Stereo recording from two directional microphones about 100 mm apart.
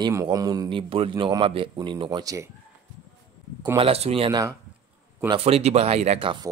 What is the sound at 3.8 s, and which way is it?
Speech, 80° right.